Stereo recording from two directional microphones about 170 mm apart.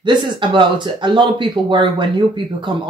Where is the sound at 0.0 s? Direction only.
30° right (ahead or behind).